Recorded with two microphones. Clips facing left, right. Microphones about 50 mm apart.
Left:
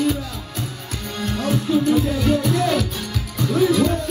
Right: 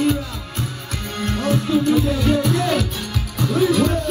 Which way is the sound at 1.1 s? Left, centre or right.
Right.